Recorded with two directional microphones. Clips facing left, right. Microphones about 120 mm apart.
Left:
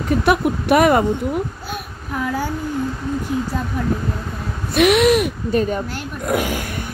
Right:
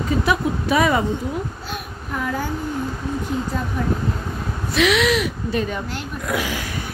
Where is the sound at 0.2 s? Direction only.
60° left (ahead or behind).